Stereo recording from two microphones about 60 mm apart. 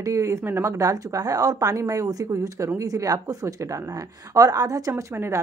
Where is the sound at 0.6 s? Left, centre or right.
Right.